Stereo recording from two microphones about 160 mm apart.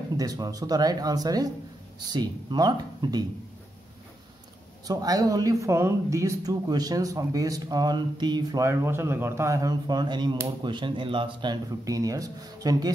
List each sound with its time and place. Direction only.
0.2 s speech: 20° right (ahead or behind)
4.8 s speech: 25° right (ahead or behind)